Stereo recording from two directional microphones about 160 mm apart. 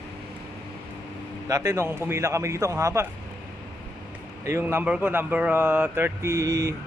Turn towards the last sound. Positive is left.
turn(degrees=-20)  # may be behind; listen again after turning